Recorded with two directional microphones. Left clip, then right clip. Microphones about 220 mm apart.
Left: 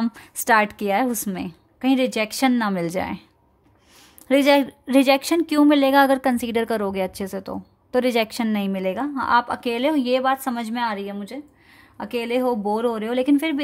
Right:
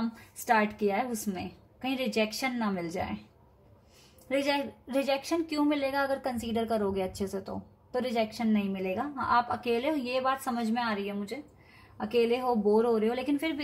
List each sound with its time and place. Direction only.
0.0 s a woman's voice: 50° left (ahead or behind)
4.3 s a woman's voice: 50° left (ahead or behind)
7.2 s a woman's voice: 60° left (ahead or behind)
7.9 s a woman's voice: 40° left (ahead or behind)